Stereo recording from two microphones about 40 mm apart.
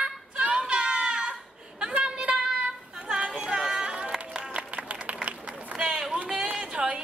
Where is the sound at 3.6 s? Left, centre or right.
Right.